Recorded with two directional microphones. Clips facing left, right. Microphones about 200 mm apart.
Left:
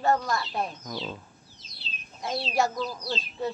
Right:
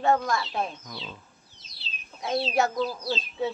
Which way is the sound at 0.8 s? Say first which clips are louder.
Left 6 dB; 40° left (ahead or behind).